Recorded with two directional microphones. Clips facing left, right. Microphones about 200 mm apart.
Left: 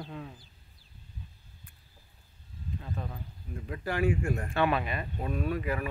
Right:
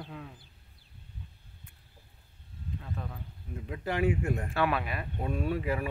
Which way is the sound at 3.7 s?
20° right (ahead or behind).